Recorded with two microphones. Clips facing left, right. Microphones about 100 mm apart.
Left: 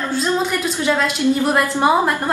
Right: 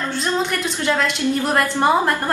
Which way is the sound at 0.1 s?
5° left (ahead or behind).